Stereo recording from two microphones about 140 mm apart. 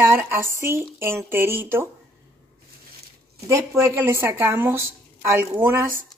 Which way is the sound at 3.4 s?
20° right (ahead or behind).